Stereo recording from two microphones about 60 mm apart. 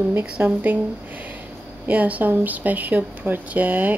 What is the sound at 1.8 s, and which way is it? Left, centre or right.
Speech, right.